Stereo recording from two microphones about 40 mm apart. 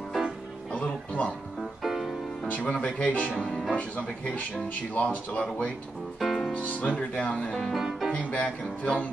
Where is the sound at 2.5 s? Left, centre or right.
Left.